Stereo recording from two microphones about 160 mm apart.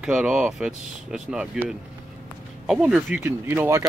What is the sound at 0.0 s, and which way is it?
Speech, 5° right (ahead or behind).